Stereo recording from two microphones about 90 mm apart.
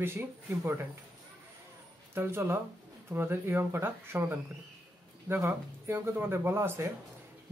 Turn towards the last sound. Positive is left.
turn(degrees=-25)  # may be behind; listen again after turning